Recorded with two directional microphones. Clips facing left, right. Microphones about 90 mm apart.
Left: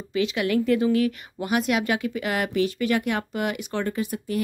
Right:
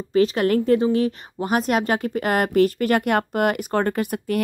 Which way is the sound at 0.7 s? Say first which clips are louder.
Right 2 dB; 30° right (ahead or behind).